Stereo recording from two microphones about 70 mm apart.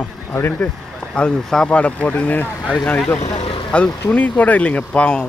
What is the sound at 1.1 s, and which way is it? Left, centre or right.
Speech, centre.